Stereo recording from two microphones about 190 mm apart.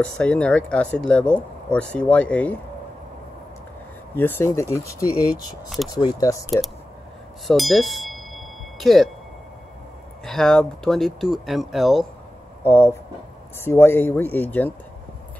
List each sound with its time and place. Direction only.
0.0 s speech: 5° left (ahead or behind)
4.2 s speech: 15° left (ahead or behind)
7.4 s a sound: centre (ahead or behind)
10.2 s speech: 5° left (ahead or behind)
12.6 s speech: 10° left (ahead or behind)